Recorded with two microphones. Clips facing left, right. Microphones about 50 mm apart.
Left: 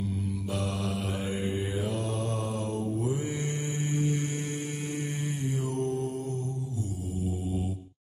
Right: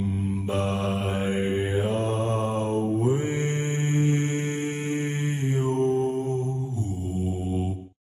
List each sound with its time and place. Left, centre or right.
0.0 s mantra: right